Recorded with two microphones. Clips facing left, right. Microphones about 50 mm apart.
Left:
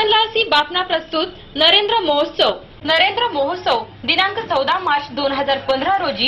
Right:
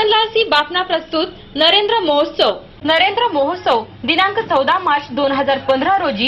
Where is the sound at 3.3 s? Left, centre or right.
Right.